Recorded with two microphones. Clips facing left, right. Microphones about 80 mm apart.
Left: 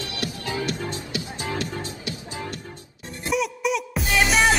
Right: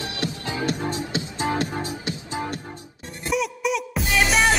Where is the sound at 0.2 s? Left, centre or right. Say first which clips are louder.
Right 1 dB; right.